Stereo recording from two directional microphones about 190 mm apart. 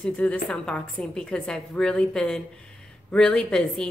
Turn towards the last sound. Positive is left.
turn(degrees=5)  # may be behind; listen again after turning